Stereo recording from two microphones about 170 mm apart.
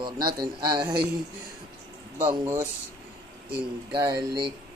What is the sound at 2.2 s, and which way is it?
Speech, 15° right (ahead or behind).